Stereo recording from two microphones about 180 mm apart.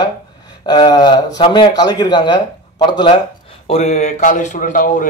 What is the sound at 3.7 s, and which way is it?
Speech, 35° left (ahead or behind).